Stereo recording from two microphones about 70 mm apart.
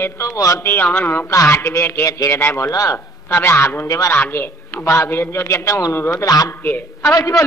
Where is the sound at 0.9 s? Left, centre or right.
Left.